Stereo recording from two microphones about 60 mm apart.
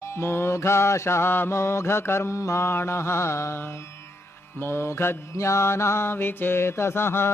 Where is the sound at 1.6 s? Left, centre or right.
Left.